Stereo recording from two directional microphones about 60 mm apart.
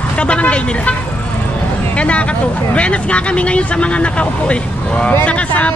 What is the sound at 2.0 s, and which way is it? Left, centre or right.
Speech, left.